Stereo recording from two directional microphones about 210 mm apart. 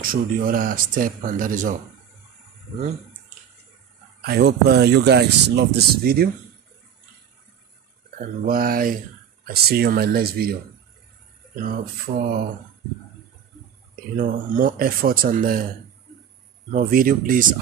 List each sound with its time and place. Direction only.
0.0 s speech: 40° right (ahead or behind)
4.2 s speech: 50° right (ahead or behind)
8.2 s speech: 45° right (ahead or behind)
14.1 s speech: 40° right (ahead or behind)
16.7 s speech: 40° right (ahead or behind)